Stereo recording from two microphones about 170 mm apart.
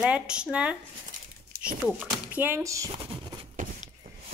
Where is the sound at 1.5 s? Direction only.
60° right (ahead or behind).